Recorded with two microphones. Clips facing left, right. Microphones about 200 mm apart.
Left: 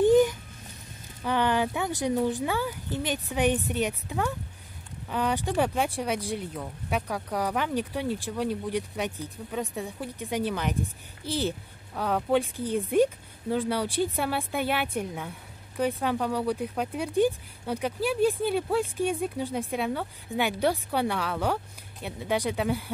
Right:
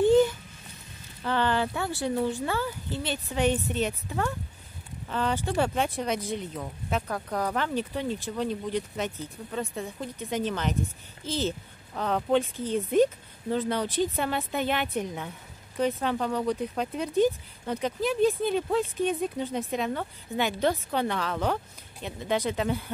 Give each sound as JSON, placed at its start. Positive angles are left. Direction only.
{"t": 0.0, "sound": "babbling", "side_deg": 15}
{"t": 1.2, "sound": "speech", "side_deg": 15}